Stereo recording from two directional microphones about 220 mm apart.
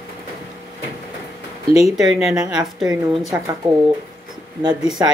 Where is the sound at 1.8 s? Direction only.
Centre (ahead or behind).